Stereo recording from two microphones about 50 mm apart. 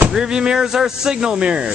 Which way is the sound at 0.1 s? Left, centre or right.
Centre.